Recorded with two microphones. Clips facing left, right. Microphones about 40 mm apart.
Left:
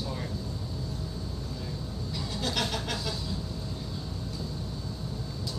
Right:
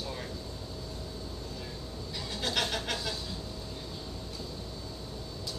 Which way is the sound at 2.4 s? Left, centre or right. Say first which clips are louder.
Even; centre.